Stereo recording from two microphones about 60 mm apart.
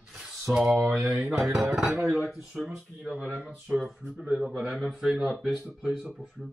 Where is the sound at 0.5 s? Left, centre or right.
Centre.